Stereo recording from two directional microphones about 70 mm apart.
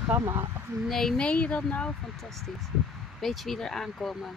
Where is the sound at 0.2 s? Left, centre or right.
Right.